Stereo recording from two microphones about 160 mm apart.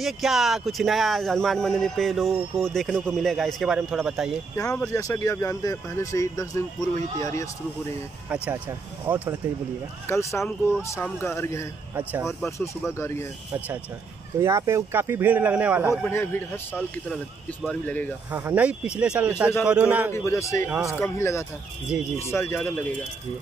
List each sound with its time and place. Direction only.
0.0 s speech: centre (ahead or behind)
4.6 s speech: 20° left (ahead or behind)
9.0 s speech: 10° right (ahead or behind)
10.0 s speech: 15° left (ahead or behind)
11.9 s speech: 10° right (ahead or behind)
12.4 s speech: 15° left (ahead or behind)
14.4 s speech: 20° right (ahead or behind)
16.0 s speech: 15° left (ahead or behind)
18.3 s speech: 10° right (ahead or behind)
20.1 s speech: 15° left (ahead or behind)
20.7 s speech: 15° right (ahead or behind)
21.0 s speech: 15° left (ahead or behind)